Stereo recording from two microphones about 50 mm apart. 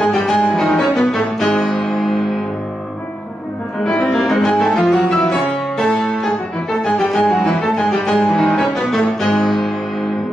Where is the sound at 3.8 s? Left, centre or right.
Centre.